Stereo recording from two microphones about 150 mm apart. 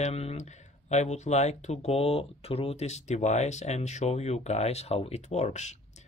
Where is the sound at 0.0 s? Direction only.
45° left (ahead or behind).